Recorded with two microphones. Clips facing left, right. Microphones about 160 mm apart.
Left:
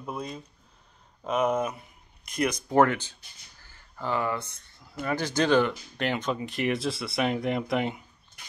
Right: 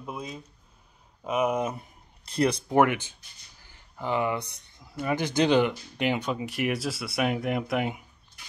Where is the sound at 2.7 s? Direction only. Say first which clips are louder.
Left 2 dB; 15° right (ahead or behind).